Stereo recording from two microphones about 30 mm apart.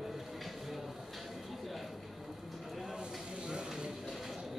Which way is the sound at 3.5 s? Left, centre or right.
Right.